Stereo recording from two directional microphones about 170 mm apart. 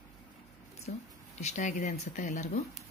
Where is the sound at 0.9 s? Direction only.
50° left (ahead or behind).